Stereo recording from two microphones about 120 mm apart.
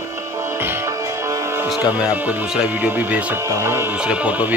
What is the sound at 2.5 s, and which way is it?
Speech, 10° right (ahead or behind).